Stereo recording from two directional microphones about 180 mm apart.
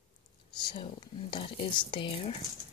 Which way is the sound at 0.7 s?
25° left (ahead or behind).